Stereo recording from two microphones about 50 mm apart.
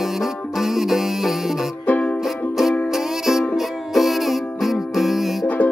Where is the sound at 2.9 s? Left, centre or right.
Centre.